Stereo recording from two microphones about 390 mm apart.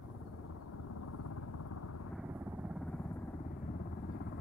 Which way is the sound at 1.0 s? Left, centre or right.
Left.